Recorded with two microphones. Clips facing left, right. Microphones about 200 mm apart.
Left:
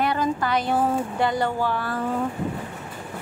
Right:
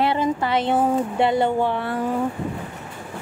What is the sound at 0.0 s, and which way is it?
Speech, 25° right (ahead or behind).